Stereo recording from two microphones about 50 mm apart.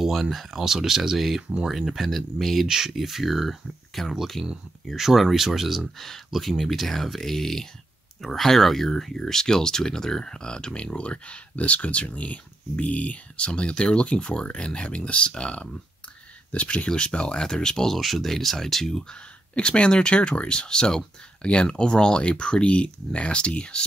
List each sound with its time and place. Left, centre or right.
0.0 s speech: centre
19.0 s speech: left